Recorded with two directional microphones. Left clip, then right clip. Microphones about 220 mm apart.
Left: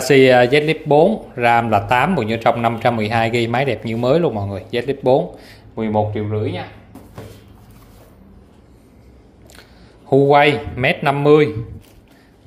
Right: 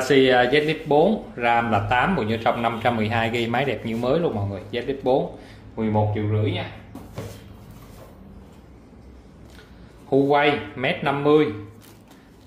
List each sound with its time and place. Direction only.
0.0 s speech: 30° left (ahead or behind)
10.0 s a man's voice: 35° left (ahead or behind)